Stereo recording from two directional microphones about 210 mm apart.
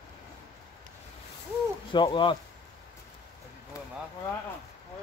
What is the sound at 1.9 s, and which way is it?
Speech, 20° left (ahead or behind).